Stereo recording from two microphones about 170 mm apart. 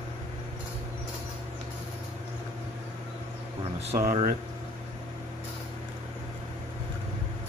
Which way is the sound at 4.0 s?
50° right (ahead or behind).